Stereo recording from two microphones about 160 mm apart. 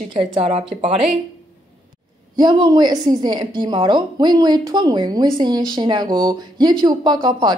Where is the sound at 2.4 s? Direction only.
25° right (ahead or behind).